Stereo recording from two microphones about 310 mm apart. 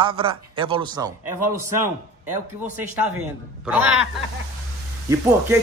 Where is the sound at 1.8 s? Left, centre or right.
Right.